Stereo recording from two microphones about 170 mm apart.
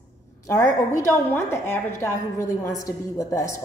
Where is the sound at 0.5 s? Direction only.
20° left (ahead or behind).